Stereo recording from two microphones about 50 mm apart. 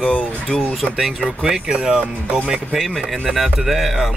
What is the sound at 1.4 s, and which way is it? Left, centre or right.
Speech, centre.